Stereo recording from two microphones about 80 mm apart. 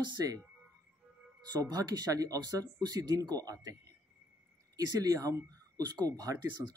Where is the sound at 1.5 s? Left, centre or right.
Right.